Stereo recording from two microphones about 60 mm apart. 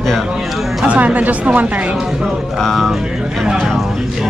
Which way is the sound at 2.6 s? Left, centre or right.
Centre.